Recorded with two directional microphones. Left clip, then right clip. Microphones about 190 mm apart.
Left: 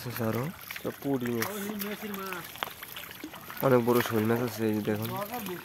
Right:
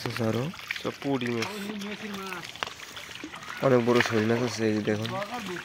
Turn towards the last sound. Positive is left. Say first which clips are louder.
# right 3 dB
turn(degrees=0)  # may be behind; listen again after turning